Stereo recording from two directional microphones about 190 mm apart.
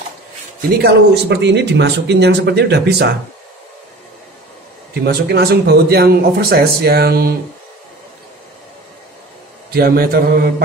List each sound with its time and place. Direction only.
0.6 s speech: 55° right (ahead or behind)
5.0 s speech: 55° right (ahead or behind)
9.7 s mantra: 50° right (ahead or behind)